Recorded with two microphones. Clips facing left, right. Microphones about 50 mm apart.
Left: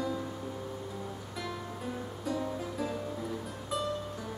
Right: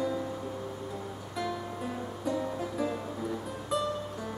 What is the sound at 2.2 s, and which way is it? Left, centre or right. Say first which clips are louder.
Music: right 2 dB; centre.